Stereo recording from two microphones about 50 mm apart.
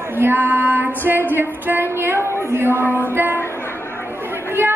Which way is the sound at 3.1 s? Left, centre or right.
Right.